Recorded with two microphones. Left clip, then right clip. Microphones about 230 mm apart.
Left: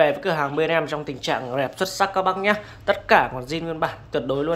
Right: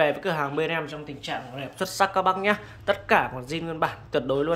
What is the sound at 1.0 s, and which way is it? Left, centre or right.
Speech, centre.